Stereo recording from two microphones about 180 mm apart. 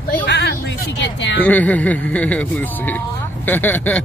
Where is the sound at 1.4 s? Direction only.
10° left (ahead or behind).